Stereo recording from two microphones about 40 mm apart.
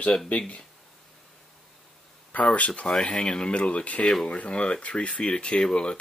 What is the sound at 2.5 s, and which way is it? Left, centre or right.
Speech, left.